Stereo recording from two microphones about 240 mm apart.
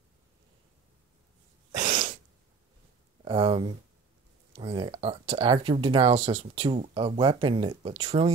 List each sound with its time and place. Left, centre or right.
1.8 s sneeze: right
3.3 s speech: centre